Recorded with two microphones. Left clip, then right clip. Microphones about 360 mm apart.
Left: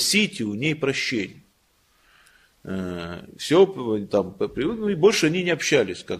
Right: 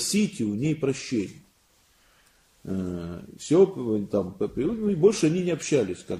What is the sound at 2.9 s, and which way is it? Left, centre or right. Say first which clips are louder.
Speech: left 4 dB; left.